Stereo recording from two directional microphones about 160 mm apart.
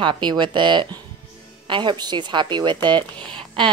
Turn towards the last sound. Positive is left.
turn(degrees=-30)  # may be behind; listen again after turning